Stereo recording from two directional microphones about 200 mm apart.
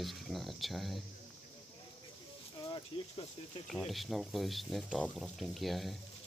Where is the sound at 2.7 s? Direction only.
25° left (ahead or behind).